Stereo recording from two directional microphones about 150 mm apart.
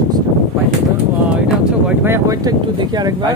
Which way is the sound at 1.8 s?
15° right (ahead or behind).